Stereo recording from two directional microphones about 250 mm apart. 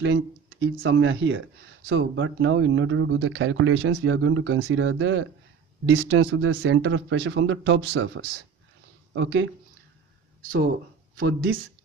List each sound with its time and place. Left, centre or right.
0.0 s speech: right
11.1 s speech: right